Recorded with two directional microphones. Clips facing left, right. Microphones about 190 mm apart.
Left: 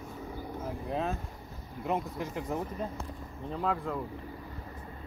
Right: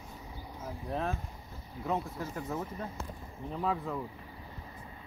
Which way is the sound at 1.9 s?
15° left (ahead or behind).